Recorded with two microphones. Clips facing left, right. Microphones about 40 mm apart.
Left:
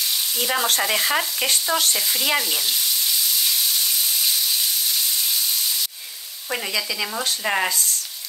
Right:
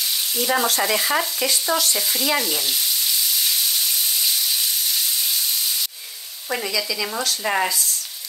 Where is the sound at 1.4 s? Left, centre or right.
Left.